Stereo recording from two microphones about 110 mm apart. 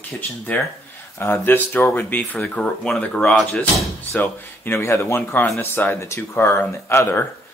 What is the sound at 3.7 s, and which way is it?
Speech, 20° left (ahead or behind).